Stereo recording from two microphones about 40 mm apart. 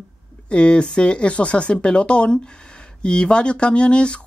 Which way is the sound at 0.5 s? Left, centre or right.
Left.